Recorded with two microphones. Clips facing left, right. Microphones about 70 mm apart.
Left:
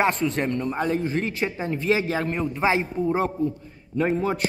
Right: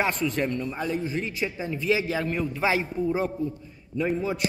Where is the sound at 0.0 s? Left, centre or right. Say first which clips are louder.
Left 3 dB; left.